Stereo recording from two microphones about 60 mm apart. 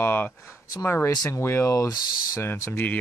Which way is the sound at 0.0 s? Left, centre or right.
Left.